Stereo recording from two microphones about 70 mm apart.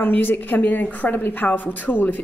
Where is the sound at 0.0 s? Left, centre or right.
Left.